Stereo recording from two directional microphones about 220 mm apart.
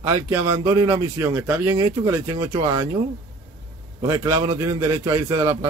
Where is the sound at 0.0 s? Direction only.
15° right (ahead or behind).